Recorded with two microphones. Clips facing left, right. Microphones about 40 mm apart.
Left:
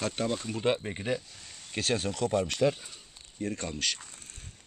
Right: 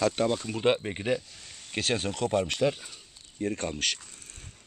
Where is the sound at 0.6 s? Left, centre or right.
Right.